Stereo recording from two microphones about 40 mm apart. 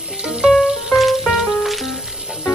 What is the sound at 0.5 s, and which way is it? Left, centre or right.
Music, centre.